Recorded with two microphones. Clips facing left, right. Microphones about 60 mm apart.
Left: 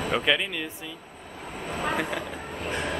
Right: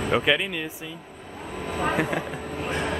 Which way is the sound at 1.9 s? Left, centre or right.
Centre.